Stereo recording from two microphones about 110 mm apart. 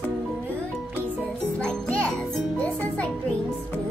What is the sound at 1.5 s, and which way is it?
Music, 10° left (ahead or behind).